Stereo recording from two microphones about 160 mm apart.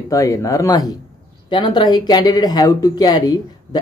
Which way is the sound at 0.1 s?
20° left (ahead or behind).